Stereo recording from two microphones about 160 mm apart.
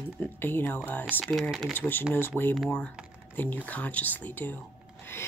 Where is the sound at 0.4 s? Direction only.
15° left (ahead or behind).